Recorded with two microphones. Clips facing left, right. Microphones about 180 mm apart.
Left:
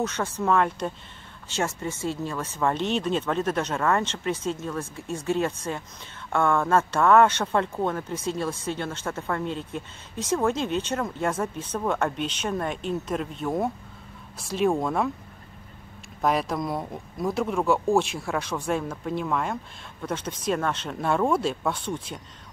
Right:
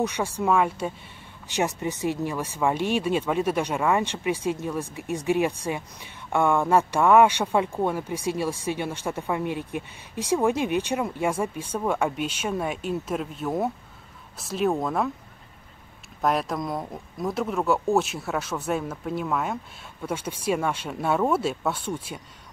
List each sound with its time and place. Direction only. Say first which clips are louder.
0.0 s speech: right 1 dB; 15° right (ahead or behind)
16.2 s speech: even; centre (ahead or behind)